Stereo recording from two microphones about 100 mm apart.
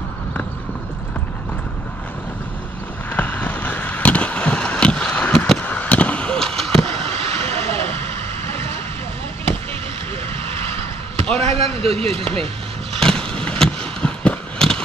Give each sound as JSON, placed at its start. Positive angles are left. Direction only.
{"t": 3.1, "sound": "vehicle", "side_deg": 15}
{"t": 5.6, "sound": "a sound", "side_deg": 15}
{"t": 7.1, "sound": "vehicle", "side_deg": -80}
{"t": 11.3, "sound": "speech", "side_deg": -90}
{"t": 13.0, "sound": "vehicle", "side_deg": 10}